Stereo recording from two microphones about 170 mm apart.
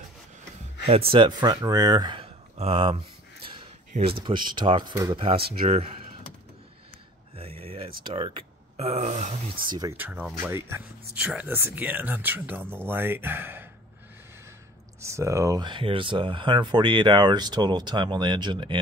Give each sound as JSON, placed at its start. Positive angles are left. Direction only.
{"t": 0.8, "sound": "speech", "side_deg": -35}
{"t": 5.5, "sound": "speech", "side_deg": -35}
{"t": 7.3, "sound": "a sound", "side_deg": -35}
{"t": 8.0, "sound": "speech", "side_deg": -35}
{"t": 9.6, "sound": "speech", "side_deg": -25}
{"t": 9.9, "sound": "speech", "side_deg": -10}
{"t": 15.0, "sound": "speech", "side_deg": -15}